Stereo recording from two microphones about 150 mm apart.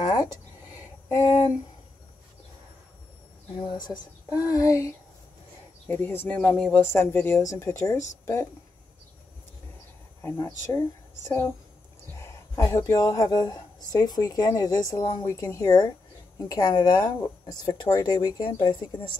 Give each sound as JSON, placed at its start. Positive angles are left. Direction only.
{"t": 0.0, "sound": "a sound", "side_deg": 25}
{"t": 3.5, "sound": "speech", "side_deg": 30}
{"t": 10.2, "sound": "speech", "side_deg": 15}